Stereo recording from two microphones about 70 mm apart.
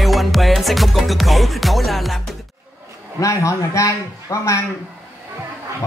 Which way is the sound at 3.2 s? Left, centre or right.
Left.